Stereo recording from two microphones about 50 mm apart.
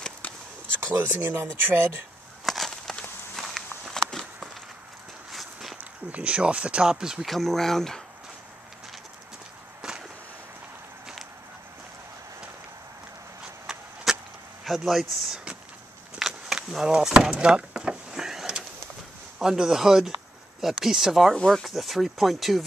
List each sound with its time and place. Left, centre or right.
0.7 s speech: right
2.4 s a sound: centre
3.3 s walk: centre
5.3 s walk: centre
5.8 s speech: right
7.2 s speech: centre
9.8 s a sound: centre
13.7 s a sound: centre
14.1 s vehicle: centre
14.6 s speech: centre
16.2 s a sound: centre
16.8 s vehicle: centre
19.3 s speech: centre